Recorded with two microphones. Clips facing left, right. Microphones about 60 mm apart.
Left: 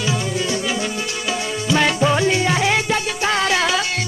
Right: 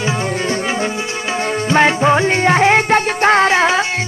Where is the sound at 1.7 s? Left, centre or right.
Right.